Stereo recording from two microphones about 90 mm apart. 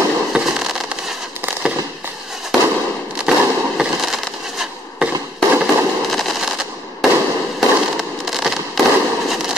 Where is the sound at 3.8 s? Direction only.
5° right (ahead or behind).